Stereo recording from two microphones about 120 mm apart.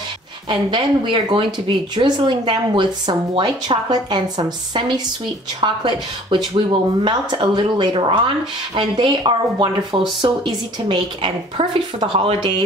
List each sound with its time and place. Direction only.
0.5 s a woman's voice: 40° right (ahead or behind)